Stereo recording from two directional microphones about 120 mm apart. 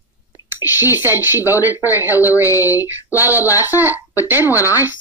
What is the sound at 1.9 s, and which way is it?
Speech, 15° right (ahead or behind).